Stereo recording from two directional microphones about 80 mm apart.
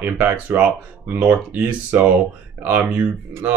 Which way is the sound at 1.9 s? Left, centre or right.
Right.